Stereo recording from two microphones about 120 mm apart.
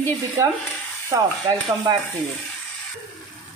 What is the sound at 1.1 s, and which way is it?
Speech, 35° right (ahead or behind).